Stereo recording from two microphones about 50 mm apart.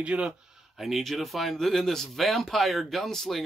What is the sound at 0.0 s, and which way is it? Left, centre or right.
Speech, right.